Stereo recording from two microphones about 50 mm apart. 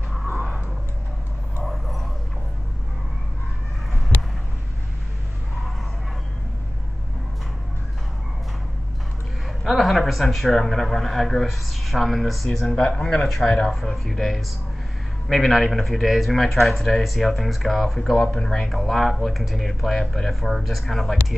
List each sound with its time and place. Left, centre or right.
1.6 s a sound: centre
9.7 s speech: centre
12.7 s speech: centre
13.3 s speech: centre
18.1 s speech: centre
18.7 s speech: centre